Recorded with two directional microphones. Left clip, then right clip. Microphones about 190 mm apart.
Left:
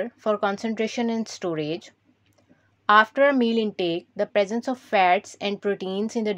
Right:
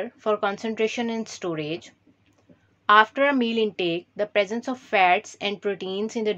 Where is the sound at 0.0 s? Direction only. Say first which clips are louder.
Even; 40° left (ahead or behind).